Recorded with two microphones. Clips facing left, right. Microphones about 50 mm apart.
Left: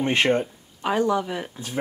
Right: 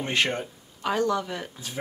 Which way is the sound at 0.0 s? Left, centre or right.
Left.